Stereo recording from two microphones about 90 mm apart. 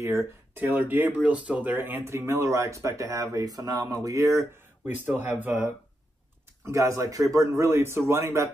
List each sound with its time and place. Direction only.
0.0 s a man's voice: 35° right (ahead or behind)
0.6 s speech: 20° right (ahead or behind)
6.6 s a man's voice: 35° right (ahead or behind)